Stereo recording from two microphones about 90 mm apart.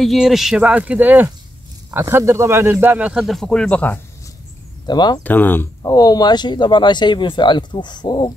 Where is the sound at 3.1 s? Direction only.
Centre (ahead or behind); by 4.0 s 15° left (ahead or behind).